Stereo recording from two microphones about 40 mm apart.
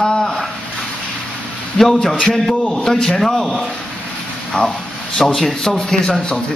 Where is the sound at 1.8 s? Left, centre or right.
Centre.